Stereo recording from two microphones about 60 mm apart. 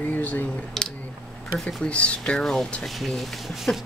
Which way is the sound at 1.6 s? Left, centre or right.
Centre.